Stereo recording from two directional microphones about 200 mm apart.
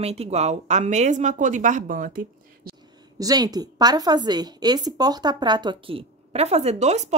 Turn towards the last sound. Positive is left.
turn(degrees=-35)  # may be behind; listen again after turning